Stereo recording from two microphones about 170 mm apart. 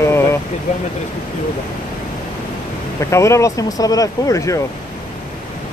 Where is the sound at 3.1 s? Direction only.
15° left (ahead or behind).